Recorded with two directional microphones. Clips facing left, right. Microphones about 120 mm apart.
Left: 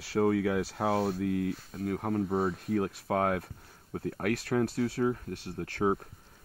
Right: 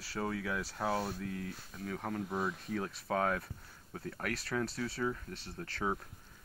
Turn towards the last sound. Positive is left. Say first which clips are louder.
# left 7 dB
turn(degrees=55)  # may be behind; listen again after turning